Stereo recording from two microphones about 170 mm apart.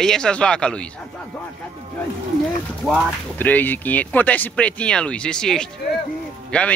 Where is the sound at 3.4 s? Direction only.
10° left (ahead or behind).